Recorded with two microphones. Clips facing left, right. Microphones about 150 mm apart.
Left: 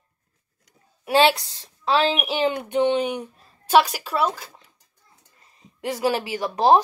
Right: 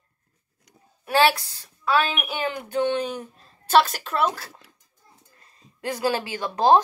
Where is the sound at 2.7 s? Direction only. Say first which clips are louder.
Left 1 dB; 15° left (ahead or behind).